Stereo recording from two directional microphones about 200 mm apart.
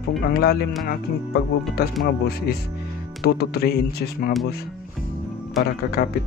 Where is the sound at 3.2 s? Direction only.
55° left (ahead or behind).